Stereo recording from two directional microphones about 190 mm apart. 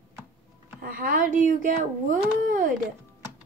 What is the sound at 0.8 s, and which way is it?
Speech, 45° right (ahead or behind).